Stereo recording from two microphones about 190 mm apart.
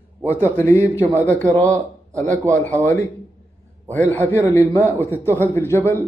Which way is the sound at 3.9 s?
10° left (ahead or behind).